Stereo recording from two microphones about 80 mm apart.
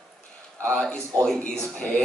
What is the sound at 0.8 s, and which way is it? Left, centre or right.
Speech, centre.